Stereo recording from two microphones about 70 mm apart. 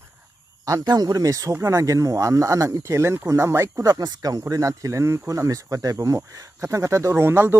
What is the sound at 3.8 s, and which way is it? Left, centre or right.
Speech, right.